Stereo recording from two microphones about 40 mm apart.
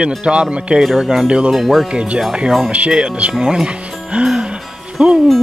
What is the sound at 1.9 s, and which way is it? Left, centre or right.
Speech, right.